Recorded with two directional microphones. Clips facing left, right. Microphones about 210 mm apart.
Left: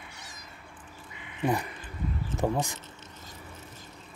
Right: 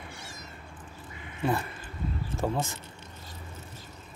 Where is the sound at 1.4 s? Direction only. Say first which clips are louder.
Left 1 dB; 15° left (ahead or behind).